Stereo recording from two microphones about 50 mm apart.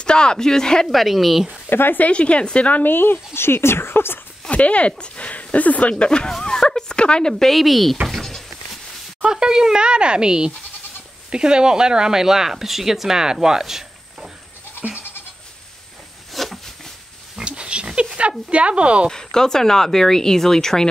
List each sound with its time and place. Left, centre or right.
0.0 s speech: centre
0.9 s speech: centre
1.7 s speech: left
2.0 s speech: left
2.8 s speech: left
4.5 s speech: left
6.0 s speech: centre
8.1 s a sound: centre
9.2 s speech: centre
16.3 s a sound: centre
17.5 s pig: right
18.5 s speech: right
19.0 s speech: centre